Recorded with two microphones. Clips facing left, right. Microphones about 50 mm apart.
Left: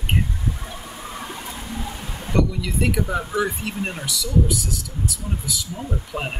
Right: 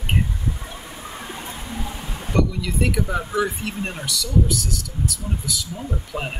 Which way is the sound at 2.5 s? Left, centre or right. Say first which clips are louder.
Even; centre.